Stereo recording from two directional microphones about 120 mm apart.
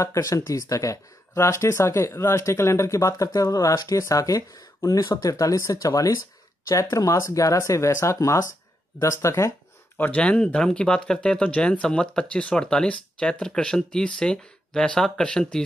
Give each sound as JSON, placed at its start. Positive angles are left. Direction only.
{"t": 0.0, "sound": "speech", "side_deg": 25}
{"t": 9.9, "sound": "speech", "side_deg": 15}